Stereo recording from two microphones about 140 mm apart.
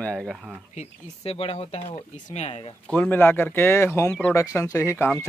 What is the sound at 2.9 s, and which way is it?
Speech, 15° left (ahead or behind).